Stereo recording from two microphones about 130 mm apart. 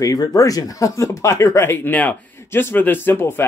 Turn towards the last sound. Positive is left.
turn(degrees=15)  # may be behind; listen again after turning